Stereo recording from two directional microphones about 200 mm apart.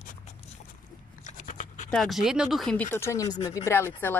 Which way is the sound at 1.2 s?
40° left (ahead or behind).